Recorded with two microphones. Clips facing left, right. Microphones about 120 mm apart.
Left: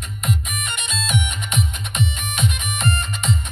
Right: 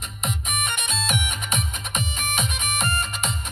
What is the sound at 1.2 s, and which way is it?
Music, 5° right (ahead or behind).